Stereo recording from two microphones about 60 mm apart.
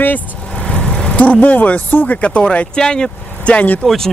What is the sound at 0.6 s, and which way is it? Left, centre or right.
Vehicle, centre.